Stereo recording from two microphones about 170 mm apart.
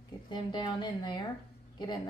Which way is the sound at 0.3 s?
25° left (ahead or behind).